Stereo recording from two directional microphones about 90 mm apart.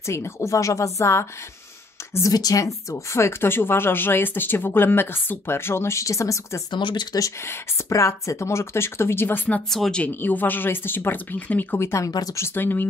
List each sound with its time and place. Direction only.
0.0 s a woman's voice: 30° left (ahead or behind)
6.7 s speech: 60° left (ahead or behind)
7.2 s speech: 35° left (ahead or behind)
9.7 s speech: 5° left (ahead or behind)
11.8 s a woman's voice: 30° left (ahead or behind)
12.1 s speech: 45° left (ahead or behind)
12.4 s speech: 25° left (ahead or behind)